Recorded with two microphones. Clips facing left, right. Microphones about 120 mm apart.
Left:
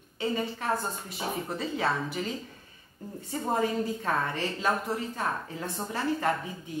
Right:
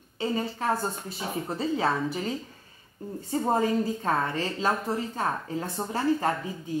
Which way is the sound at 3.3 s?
30° right (ahead or behind).